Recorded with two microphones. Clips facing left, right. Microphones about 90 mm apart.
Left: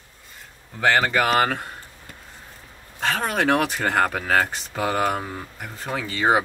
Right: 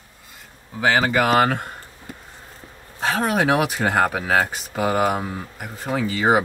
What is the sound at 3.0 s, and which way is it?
Speech, 5° right (ahead or behind).